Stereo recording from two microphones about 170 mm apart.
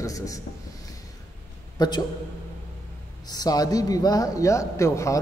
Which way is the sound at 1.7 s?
25° left (ahead or behind).